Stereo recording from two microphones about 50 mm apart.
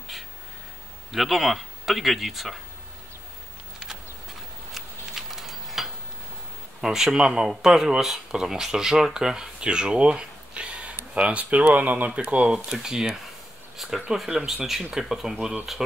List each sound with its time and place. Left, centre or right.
1.1 s speech: centre
4.7 s a sound: centre
6.8 s speech: centre
12.5 s speech: centre
15.3 s speech: centre